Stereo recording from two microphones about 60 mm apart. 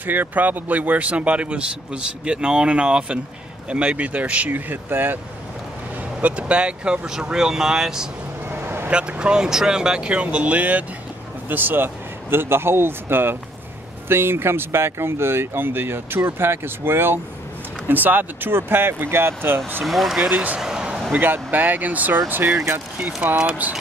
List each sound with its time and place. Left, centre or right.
0.0 s speech: right
6.2 s speech: right
8.5 s vehicle: right
8.9 s speech: centre; by 19.8 s right
19.8 s speech: centre
20.2 s speech: centre
20.6 s a sound: centre
21.1 s speech: right
22.9 s speech: right